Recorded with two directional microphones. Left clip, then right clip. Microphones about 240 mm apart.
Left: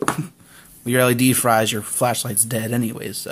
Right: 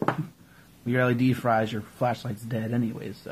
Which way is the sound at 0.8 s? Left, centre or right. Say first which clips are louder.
Left 7 dB; left.